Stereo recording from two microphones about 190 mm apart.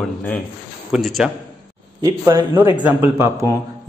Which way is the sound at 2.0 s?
25° right (ahead or behind).